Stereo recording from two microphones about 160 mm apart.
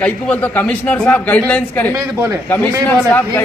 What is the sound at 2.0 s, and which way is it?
Speech, 15° right (ahead or behind).